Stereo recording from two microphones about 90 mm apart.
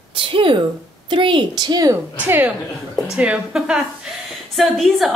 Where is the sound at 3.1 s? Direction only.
10° right (ahead or behind).